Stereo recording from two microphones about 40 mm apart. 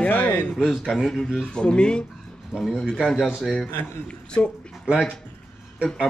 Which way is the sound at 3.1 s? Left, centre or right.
Centre.